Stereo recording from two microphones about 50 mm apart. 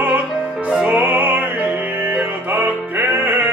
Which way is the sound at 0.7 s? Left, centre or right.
Right.